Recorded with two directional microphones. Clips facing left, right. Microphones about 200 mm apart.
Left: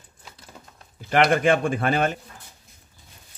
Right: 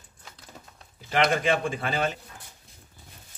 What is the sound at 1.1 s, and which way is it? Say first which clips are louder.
Speech: left 5 dB; 60° left (ahead or behind).